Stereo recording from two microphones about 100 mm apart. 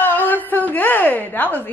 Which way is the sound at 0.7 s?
20° left (ahead or behind).